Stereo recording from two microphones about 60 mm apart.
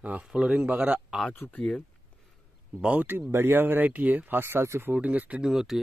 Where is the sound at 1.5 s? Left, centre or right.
Left.